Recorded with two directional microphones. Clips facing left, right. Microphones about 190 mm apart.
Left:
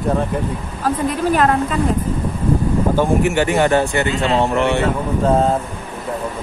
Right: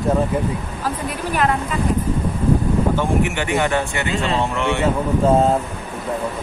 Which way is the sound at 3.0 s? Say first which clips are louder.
Left 4 dB; 40° left (ahead or behind).